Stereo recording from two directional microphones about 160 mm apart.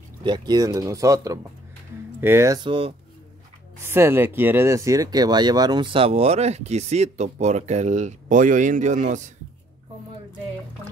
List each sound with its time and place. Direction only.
0.2 s speech: 30° right (ahead or behind)
3.8 s speech: 15° right (ahead or behind); by 9.3 s 50° right (ahead or behind)